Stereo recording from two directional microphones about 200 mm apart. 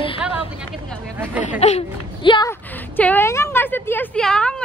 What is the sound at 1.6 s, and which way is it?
Speech, 30° left (ahead or behind).